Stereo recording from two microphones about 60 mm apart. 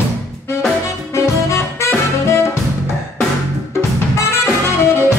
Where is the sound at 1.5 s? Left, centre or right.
Left.